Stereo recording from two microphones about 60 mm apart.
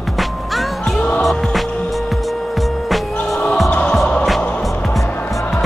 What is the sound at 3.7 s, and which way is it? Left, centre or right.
Music, left.